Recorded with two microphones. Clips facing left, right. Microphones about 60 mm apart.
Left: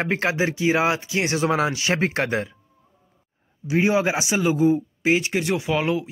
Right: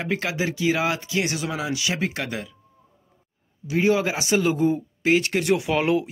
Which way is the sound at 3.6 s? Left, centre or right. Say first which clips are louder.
Left 1 dB; left.